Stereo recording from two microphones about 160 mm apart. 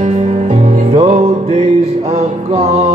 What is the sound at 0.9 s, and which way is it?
Music, 40° right (ahead or behind).